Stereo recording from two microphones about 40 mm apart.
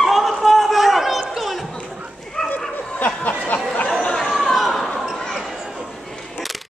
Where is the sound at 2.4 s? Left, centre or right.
Centre.